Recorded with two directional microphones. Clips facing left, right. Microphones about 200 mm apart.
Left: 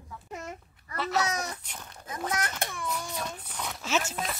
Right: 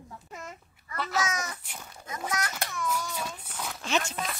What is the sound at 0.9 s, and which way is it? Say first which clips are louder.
Cat: left 2 dB; centre (ahead or behind).